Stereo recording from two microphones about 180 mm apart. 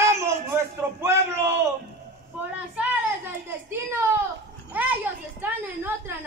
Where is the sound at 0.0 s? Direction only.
15° right (ahead or behind).